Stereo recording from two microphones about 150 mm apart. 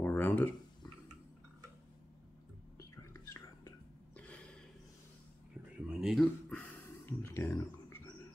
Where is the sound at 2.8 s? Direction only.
20° left (ahead or behind).